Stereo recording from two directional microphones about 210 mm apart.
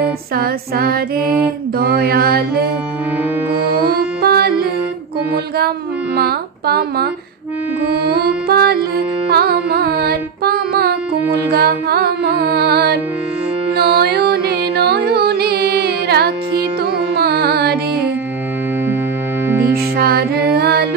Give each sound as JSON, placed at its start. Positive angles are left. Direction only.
{"t": 0.0, "sound": "music", "side_deg": -45}
{"t": 3.8, "sound": "music", "side_deg": -50}
{"t": 6.1, "sound": "speech", "side_deg": -50}
{"t": 7.9, "sound": "music", "side_deg": -50}
{"t": 17.1, "sound": "carnatic music", "side_deg": -50}
{"t": 19.6, "sound": "music", "side_deg": -45}